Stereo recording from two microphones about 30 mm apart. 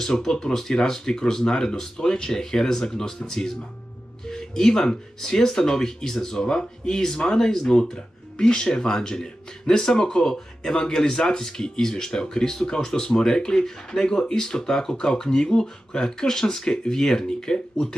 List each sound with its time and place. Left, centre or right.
0.0 s speech: centre